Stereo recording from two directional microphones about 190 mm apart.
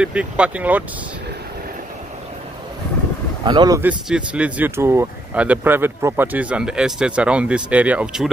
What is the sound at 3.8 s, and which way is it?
Speech, 5° right (ahead or behind).